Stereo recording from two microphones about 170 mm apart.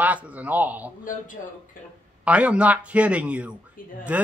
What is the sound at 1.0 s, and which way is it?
Speech, 50° left (ahead or behind).